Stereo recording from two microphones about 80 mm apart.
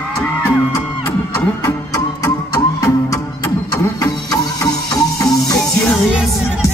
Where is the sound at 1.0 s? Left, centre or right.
Left.